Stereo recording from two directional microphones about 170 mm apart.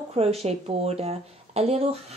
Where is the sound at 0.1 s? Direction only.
35° right (ahead or behind).